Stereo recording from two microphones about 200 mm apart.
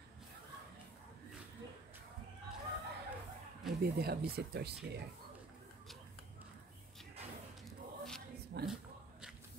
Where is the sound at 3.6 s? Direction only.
50° right (ahead or behind).